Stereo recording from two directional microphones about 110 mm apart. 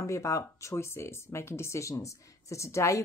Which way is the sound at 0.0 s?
30° left (ahead or behind).